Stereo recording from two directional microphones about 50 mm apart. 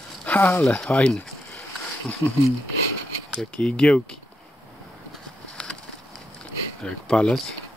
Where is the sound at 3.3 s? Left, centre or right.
Centre.